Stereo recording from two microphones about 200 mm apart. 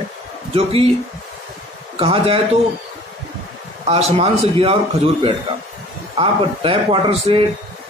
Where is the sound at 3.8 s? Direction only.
30° right (ahead or behind).